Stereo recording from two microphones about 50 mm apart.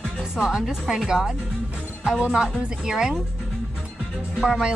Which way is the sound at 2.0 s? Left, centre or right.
Centre.